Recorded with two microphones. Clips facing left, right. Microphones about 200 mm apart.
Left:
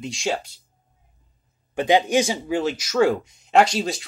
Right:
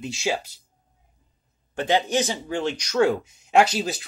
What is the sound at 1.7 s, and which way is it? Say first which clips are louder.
Speech: left 4 dB; 15° left (ahead or behind).